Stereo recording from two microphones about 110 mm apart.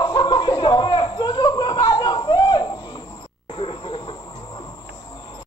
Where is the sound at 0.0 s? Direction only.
40° left (ahead or behind).